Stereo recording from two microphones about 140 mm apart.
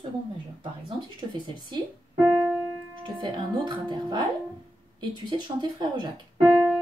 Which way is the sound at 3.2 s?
30° right (ahead or behind).